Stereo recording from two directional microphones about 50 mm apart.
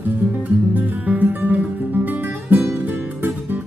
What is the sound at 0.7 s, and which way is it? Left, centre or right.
Music, right.